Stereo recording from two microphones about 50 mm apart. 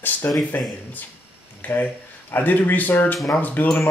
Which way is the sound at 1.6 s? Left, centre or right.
Left.